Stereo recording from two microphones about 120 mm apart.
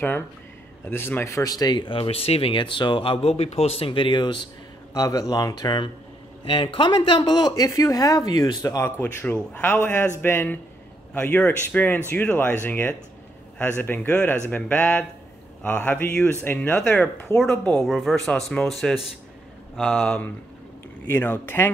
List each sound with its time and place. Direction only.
0.8 s speech: 15° left (ahead or behind); by 4.5 s 40° left (ahead or behind)
4.9 s a man's voice: 30° left (ahead or behind)
17.8 s speech: centre (ahead or behind)
21.1 s a man's voice: 15° left (ahead or behind)